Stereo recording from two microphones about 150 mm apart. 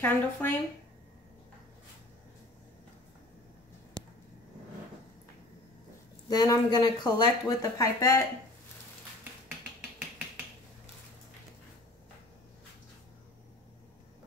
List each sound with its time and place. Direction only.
0.0 s speech: 15° left (ahead or behind)
6.2 s speech: 25° left (ahead or behind)